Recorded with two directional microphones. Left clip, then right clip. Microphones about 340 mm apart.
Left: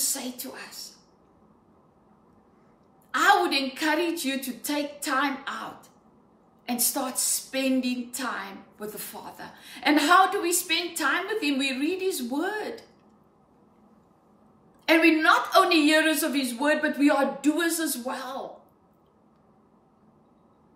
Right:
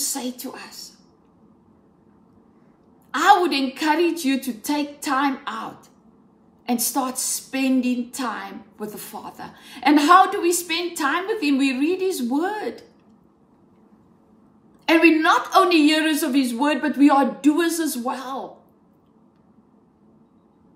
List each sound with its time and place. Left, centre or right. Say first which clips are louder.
0.0 s a woman's voice: right 4 dB; centre
3.1 s a woman's voice: right 5 dB; centre
14.9 s a woman's voice: right 4 dB; centre